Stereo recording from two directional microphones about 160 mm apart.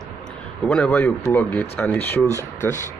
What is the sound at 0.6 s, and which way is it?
Speech, 5° left (ahead or behind).